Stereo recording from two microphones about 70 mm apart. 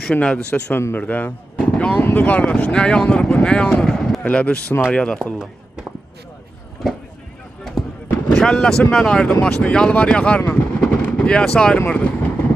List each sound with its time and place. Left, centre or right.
0.2 s speech: centre
4.2 s speech: centre
8.3 s speech: centre
10.4 s vehicle: left